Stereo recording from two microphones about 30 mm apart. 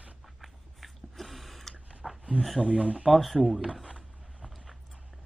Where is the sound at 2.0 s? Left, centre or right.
Centre.